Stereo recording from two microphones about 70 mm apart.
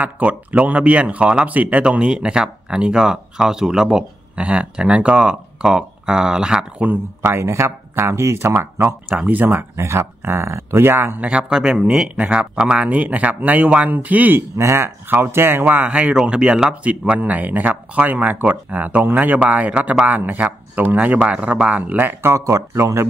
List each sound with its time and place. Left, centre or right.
0.0 s speech: right
7.2 s speech: right
9.1 s speech: right
9.8 s speech: right
11.1 s speech: centre
14.6 s speech: right
22.2 s speech: right